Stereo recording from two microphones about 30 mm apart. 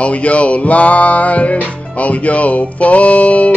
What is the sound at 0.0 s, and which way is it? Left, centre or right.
Music, left.